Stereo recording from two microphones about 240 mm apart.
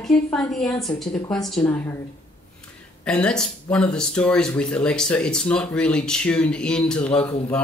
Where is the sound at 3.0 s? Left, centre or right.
Centre.